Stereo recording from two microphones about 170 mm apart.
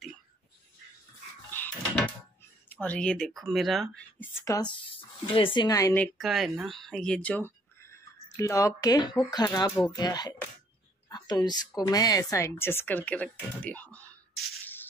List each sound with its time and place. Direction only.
1.5 s a sound: 10° left (ahead or behind)
2.7 s speech: 10° left (ahead or behind)
5.9 s speech: centre (ahead or behind)